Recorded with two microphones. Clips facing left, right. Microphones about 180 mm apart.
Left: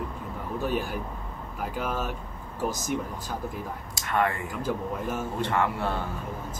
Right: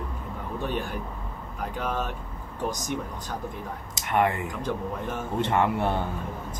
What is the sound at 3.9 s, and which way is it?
Speech, 20° right (ahead or behind).